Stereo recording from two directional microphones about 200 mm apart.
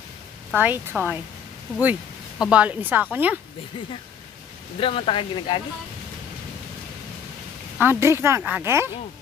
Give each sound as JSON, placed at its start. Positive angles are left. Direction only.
{"t": 0.5, "sound": "speech", "side_deg": -5}
{"t": 4.7, "sound": "speech", "side_deg": 25}
{"t": 7.8, "sound": "speech", "side_deg": -10}